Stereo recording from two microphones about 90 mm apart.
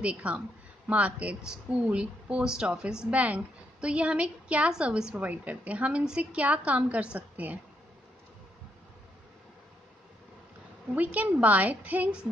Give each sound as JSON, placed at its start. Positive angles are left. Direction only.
{"t": 0.0, "sound": "a woman's voice", "side_deg": -15}
{"t": 11.0, "sound": "a woman's voice", "side_deg": -15}